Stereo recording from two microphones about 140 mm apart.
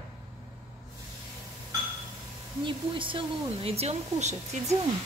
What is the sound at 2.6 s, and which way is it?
Speech, 35° right (ahead or behind).